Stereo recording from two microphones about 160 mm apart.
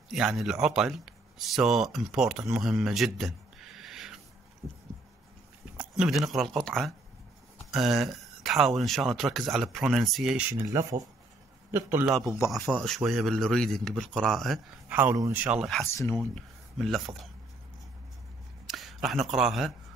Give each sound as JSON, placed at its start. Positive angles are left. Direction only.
{"t": 0.1, "sound": "speech", "side_deg": 0}
{"t": 4.6, "sound": "heart murmur", "side_deg": -20}
{"t": 5.8, "sound": "speech", "side_deg": -5}
{"t": 12.4, "sound": "speech", "side_deg": 5}
{"t": 14.9, "sound": "speech", "side_deg": -10}
{"t": 18.7, "sound": "speech", "side_deg": 0}